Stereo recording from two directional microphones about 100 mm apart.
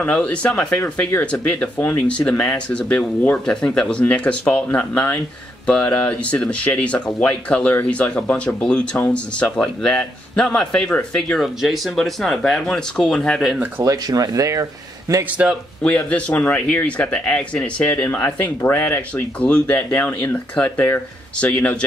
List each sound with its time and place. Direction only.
0.0 s a man's voice: 10° left (ahead or behind)
13.8 s speech: 40° right (ahead or behind)
15.8 s a man's voice: 10° left (ahead or behind)